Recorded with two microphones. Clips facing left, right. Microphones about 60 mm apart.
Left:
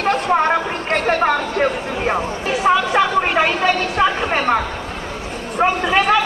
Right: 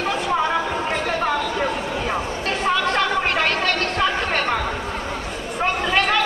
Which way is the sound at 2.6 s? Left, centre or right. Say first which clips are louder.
Left 5 dB; centre.